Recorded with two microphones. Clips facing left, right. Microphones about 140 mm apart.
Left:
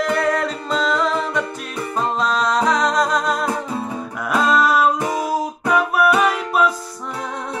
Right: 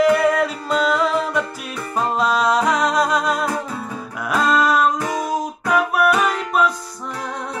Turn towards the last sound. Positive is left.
turn(degrees=5)  # may be behind; listen again after turning